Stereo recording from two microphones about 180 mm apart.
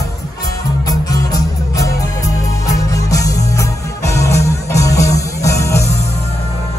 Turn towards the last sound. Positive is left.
turn(degrees=15)  # may be behind; listen again after turning